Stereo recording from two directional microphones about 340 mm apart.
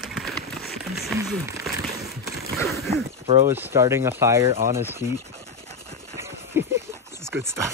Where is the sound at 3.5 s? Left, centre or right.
Centre.